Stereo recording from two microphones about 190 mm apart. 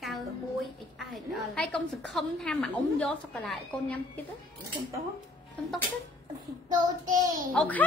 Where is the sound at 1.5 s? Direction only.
5° left (ahead or behind).